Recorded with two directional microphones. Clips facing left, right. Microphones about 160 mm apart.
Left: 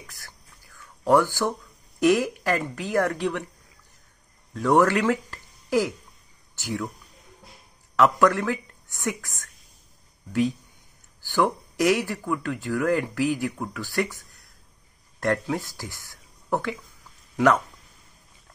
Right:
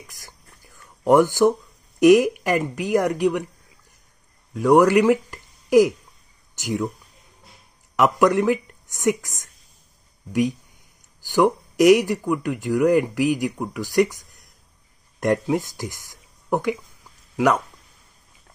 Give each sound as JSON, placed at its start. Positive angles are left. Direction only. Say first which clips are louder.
{"t": 0.0, "sound": "whispering", "louder": "right 1 dB", "side_deg": -15}
{"t": 2.0, "sound": "speech", "louder": "right 7 dB", "side_deg": -15}
{"t": 4.6, "sound": "speech", "louder": "right 5 dB", "side_deg": -10}
{"t": 7.9, "sound": "a woman's voice", "louder": "right 2 dB", "side_deg": -15}
{"t": 11.2, "sound": "speech", "louder": "right 5 dB", "side_deg": -15}